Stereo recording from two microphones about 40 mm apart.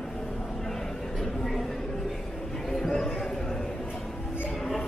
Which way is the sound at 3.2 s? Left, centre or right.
Centre.